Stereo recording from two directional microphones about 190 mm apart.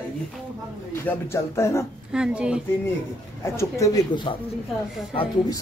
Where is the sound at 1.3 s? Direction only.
15° left (ahead or behind).